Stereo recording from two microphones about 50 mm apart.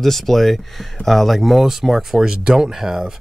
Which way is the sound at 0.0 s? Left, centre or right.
Centre.